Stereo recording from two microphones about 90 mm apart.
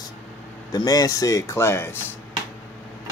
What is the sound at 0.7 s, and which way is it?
Speech, 45° left (ahead or behind).